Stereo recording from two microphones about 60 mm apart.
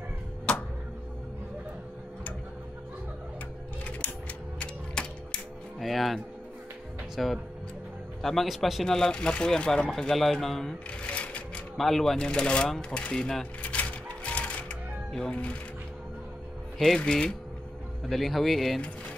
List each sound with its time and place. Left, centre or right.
0.5 s a sound: centre
4.6 s mechanisms: centre
5.8 s a man's voice: centre
8.8 s a man's voice: centre
11.1 s sewing machine: left
11.7 s a man's voice: centre
12.3 s speech: centre
13.6 s sewing machine: left
15.1 s speech: centre
16.7 s speech: centre
18.0 s a man's voice: centre